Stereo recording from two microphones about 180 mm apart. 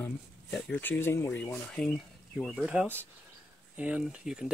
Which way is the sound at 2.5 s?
5° right (ahead or behind).